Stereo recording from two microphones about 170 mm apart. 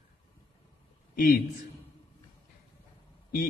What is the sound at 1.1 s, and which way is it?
Speech, 55° left (ahead or behind).